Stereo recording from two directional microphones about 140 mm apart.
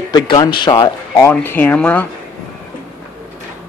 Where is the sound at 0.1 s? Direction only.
30° left (ahead or behind).